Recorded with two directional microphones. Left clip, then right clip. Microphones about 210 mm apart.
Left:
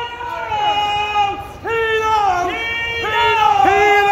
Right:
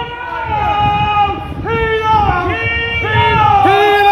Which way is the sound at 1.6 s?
45° left (ahead or behind).